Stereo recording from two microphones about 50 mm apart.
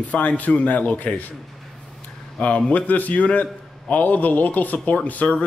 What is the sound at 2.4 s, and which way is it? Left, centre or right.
A man's voice, left.